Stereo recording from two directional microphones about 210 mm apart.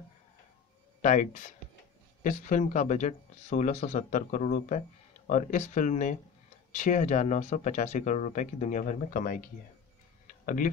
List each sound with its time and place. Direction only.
1.0 s speech: 35° left (ahead or behind)